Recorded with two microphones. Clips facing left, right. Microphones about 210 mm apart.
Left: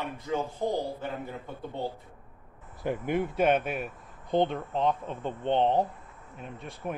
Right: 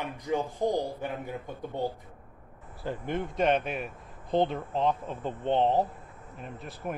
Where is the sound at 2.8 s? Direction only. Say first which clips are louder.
Left 4 dB; 10° left (ahead or behind).